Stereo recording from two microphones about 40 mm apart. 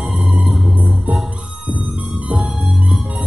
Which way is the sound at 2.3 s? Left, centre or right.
Centre.